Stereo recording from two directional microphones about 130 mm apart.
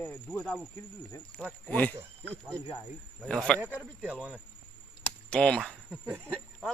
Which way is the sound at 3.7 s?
10° right (ahead or behind).